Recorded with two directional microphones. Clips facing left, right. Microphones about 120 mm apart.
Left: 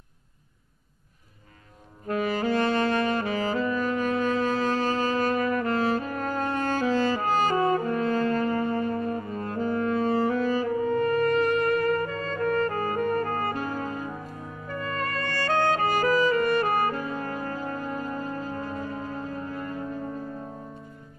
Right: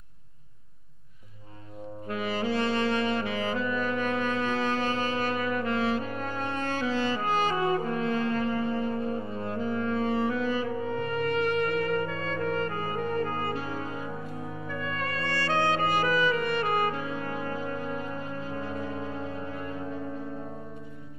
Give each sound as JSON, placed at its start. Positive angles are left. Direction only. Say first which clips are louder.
{"t": 2.0, "sound": "saxophone", "louder": "left 4 dB", "side_deg": 45}
{"t": 9.4, "sound": "music", "louder": "left 4 dB", "side_deg": 45}
{"t": 12.4, "sound": "brass instrument", "louder": "left 7 dB", "side_deg": 45}